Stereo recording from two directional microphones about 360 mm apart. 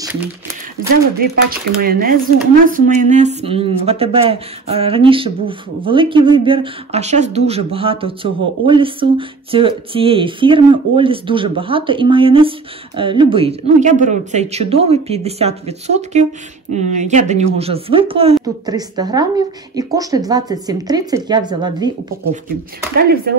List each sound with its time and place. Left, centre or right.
0.0 s a sound: centre
1.2 s speech: right
22.9 s speech: right